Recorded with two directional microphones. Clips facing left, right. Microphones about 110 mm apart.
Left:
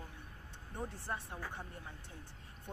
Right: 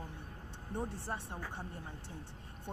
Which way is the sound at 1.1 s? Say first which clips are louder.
Right 1 dB; 30° right (ahead or behind).